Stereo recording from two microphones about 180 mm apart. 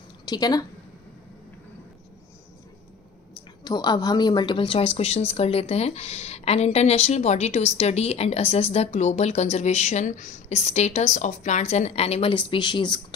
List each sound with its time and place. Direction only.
0.2 s a woman's voice: 20° left (ahead or behind)
3.6 s a woman's voice: 25° left (ahead or behind)